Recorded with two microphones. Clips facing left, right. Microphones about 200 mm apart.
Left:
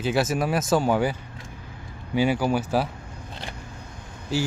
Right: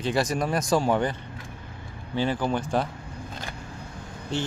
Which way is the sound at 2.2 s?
10° left (ahead or behind).